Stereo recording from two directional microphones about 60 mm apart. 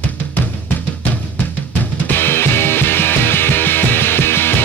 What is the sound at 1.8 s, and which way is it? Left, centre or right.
Music, left.